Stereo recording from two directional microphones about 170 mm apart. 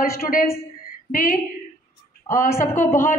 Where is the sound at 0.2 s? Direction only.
55° left (ahead or behind).